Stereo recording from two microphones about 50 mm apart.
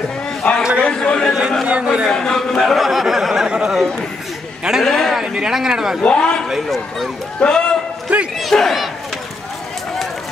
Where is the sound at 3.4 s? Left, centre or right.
Centre.